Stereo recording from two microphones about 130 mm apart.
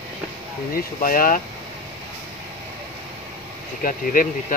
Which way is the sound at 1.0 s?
90° left.